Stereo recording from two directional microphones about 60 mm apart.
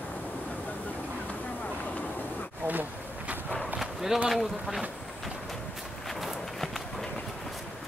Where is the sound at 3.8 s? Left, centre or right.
Centre.